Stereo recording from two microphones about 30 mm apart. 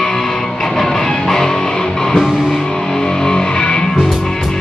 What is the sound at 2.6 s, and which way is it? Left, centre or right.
Music, left.